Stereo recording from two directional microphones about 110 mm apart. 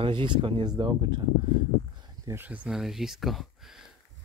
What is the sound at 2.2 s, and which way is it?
Speech, 20° right (ahead or behind).